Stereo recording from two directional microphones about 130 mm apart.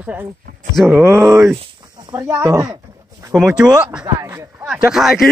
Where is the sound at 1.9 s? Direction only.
30° right (ahead or behind).